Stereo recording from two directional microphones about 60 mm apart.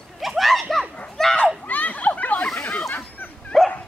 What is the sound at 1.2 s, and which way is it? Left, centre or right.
Children playing, centre.